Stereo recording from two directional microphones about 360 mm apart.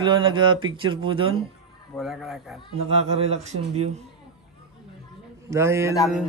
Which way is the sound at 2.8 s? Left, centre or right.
Centre.